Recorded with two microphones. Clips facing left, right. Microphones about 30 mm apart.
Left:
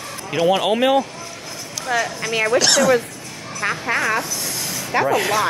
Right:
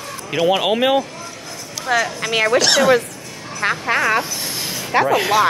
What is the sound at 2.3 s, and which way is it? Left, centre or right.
Speech, right.